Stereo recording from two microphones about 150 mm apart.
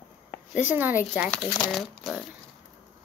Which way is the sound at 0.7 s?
10° right (ahead or behind).